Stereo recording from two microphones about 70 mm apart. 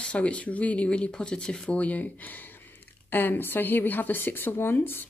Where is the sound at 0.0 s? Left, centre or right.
Centre.